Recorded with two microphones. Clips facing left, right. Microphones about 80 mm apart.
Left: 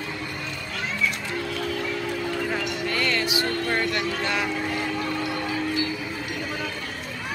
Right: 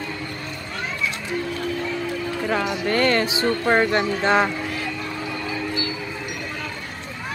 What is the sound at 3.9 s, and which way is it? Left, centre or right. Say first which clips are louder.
Speech: right 7 dB; right.